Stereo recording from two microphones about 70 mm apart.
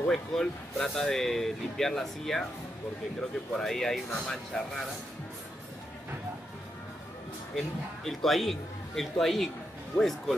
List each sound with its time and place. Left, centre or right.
0.1 s speech: centre
7.5 s speech: centre